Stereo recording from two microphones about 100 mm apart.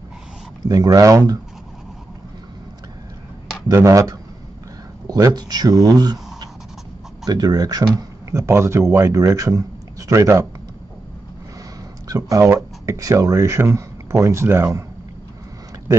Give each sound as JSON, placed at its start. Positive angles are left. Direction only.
{"t": 0.7, "sound": "speech", "side_deg": -35}
{"t": 3.7, "sound": "speech", "side_deg": -35}
{"t": 7.2, "sound": "speech", "side_deg": -40}
{"t": 8.3, "sound": "speech", "side_deg": -30}
{"t": 12.1, "sound": "speech", "side_deg": -35}